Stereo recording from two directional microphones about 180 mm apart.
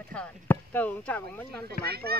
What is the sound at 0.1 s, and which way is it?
Speech, 10° left (ahead or behind).